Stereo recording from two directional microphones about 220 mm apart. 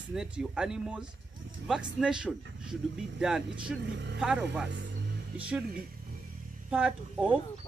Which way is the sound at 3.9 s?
55° right (ahead or behind).